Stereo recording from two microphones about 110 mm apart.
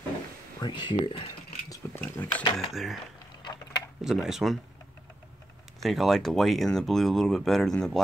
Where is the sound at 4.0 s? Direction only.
5° right (ahead or behind).